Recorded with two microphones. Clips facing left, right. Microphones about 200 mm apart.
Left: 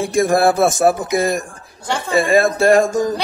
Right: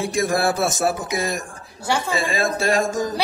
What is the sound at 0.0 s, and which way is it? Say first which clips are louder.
A man's voice: left 6 dB; 50° left (ahead or behind).